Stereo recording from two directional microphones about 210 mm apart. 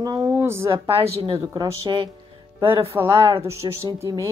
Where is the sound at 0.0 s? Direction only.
15° right (ahead or behind).